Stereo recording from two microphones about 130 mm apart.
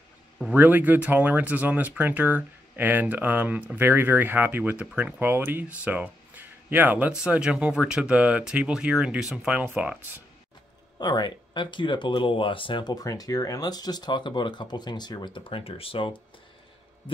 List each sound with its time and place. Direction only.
0.6 s speech: 15° right (ahead or behind)
11.0 s speech: 35° left (ahead or behind)